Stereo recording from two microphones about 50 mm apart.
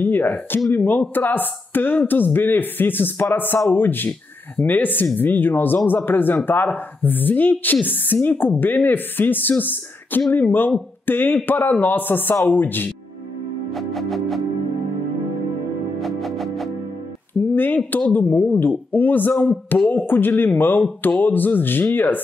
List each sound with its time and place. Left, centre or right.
0.0 s speech: left
13.7 s music: centre
16.0 s music: centre
17.3 s speech: left